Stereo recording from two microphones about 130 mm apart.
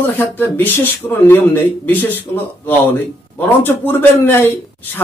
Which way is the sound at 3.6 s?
15° left (ahead or behind).